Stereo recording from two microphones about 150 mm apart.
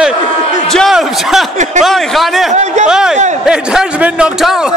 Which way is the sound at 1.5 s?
55° right (ahead or behind).